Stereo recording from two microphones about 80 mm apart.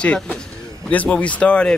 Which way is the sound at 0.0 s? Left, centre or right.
Centre.